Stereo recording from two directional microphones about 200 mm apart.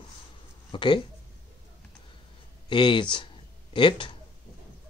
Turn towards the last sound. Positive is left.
turn(degrees=25)  # may be behind; listen again after turning